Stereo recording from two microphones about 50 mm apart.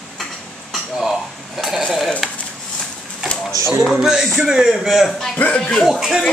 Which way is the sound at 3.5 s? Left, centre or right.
Right.